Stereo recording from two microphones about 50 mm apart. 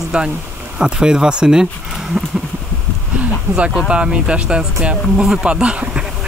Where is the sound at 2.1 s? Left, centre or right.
Right.